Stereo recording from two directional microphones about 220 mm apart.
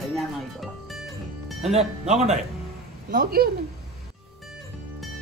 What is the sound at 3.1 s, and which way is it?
Speech, 40° right (ahead or behind).